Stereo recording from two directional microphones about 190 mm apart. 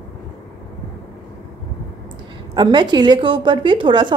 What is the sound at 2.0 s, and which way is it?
Speech, 25° right (ahead or behind).